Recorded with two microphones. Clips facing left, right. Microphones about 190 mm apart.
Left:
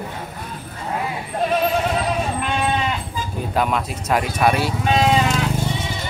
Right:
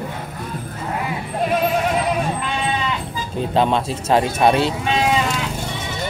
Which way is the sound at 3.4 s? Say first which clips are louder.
Right 4 dB; 25° right (ahead or behind).